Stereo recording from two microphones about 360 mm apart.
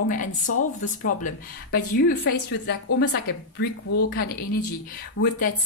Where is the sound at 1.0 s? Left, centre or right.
Left.